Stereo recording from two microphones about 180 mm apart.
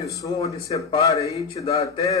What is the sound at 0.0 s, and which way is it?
Speech, 20° left (ahead or behind).